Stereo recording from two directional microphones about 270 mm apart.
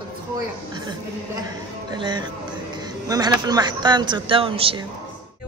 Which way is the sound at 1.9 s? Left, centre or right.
Centre.